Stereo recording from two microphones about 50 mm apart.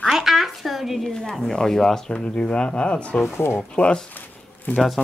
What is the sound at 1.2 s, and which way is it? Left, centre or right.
Speech, centre.